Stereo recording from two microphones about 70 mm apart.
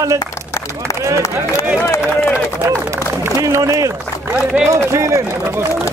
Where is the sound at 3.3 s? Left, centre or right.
Right.